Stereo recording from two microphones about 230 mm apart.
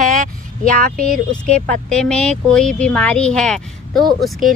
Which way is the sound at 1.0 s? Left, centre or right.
Centre.